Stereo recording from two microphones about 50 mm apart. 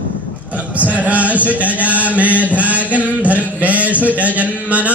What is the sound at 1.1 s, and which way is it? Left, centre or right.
Mantra, right.